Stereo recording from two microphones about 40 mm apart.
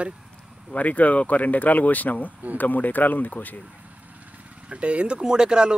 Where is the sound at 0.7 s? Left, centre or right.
Left.